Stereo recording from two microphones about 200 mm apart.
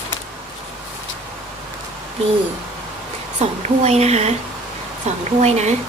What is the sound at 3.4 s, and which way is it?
A woman's voice, 35° right (ahead or behind).